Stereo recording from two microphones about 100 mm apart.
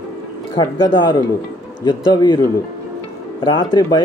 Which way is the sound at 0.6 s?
45° left (ahead or behind).